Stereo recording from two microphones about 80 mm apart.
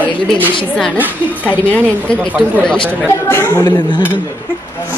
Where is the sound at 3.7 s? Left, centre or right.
Left.